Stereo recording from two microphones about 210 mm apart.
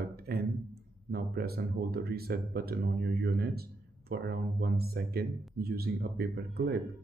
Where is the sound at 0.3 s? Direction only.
45° right (ahead or behind).